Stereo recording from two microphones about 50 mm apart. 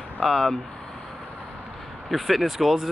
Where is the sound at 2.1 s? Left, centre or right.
Centre.